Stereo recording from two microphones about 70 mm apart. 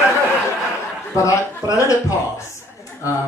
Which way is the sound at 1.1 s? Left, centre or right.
Left.